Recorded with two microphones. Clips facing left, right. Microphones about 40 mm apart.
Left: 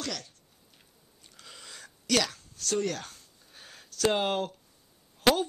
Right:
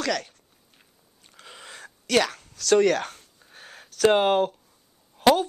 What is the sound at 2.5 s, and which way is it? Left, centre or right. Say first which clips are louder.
Speech: right 12 dB; right.